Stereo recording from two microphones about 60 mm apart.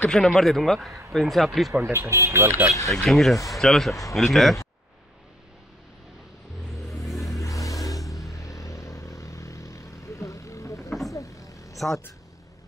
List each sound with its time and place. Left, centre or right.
0.1 s speech: centre
1.7 s speech: right
2.9 s speech: centre
6.9 s vehicle: centre
7.4 s vehicle: left
10.9 s vehicle: centre
11.1 s vehicle: left
11.7 s a sound: centre